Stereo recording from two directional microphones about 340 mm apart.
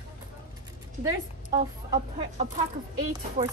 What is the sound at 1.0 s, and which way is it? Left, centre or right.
Speech, centre.